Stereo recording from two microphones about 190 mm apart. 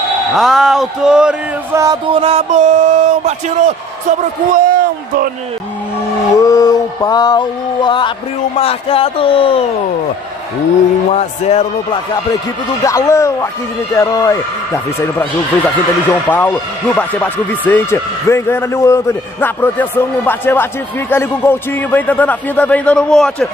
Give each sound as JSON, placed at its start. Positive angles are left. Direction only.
{"t": 0.4, "sound": "speech", "side_deg": 0}
{"t": 1.7, "sound": "music", "side_deg": -15}
{"t": 2.1, "sound": "speech", "side_deg": -30}
{"t": 4.5, "sound": "a sound", "side_deg": -45}
{"t": 6.3, "sound": "a sound", "side_deg": 20}
{"t": 8.5, "sound": "speech", "side_deg": 30}
{"t": 11.1, "sound": "speech", "side_deg": 35}
{"t": 12.8, "sound": "speech", "side_deg": 15}
{"t": 16.1, "sound": "speech", "side_deg": 10}